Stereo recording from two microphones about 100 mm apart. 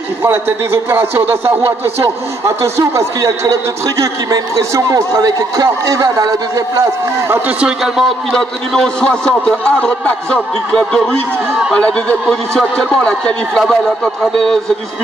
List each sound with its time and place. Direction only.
0.2 s a man's voice: 25° right (ahead or behind)
7.6 s a man's voice: 5° right (ahead or behind)